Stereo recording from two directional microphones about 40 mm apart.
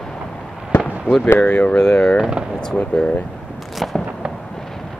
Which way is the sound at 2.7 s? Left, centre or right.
Left.